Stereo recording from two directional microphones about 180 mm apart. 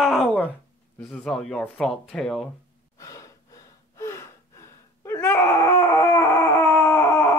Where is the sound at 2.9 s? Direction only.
15° left (ahead or behind).